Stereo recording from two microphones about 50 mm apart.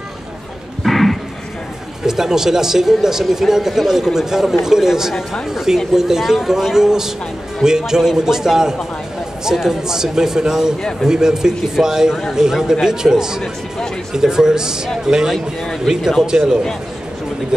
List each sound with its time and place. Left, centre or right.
0.8 s a sound: centre
2.0 s speech: centre
15.3 s speech: centre
15.9 s speech: centre
16.3 s speech: centre